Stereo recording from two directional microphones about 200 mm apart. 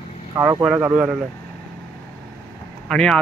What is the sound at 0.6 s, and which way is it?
Speech, 5° right (ahead or behind).